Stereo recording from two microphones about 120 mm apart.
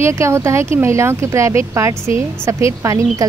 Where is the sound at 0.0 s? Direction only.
25° right (ahead or behind).